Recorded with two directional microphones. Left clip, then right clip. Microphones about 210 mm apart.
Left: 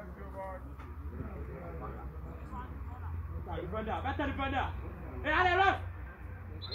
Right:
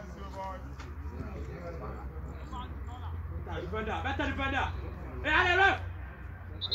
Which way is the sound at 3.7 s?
25° left (ahead or behind).